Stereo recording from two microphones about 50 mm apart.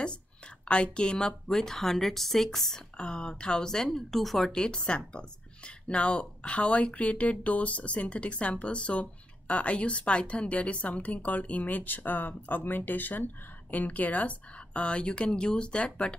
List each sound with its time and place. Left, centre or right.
0.7 s a woman's voice: left; by 4.5 s centre
4.5 s a woman's voice: centre